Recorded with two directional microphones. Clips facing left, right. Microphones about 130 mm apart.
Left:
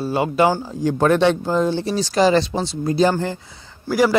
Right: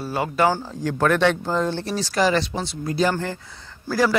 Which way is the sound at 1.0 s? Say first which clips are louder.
Left 3 dB; 20° left (ahead or behind).